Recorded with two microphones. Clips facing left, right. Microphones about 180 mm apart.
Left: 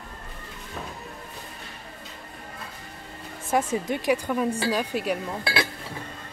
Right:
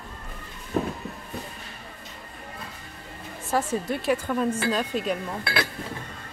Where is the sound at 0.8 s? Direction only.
45° right (ahead or behind).